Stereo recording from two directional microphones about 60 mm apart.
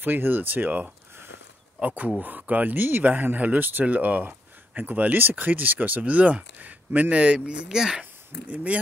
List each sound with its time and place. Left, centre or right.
0.0 s speech: right; by 8.0 s centre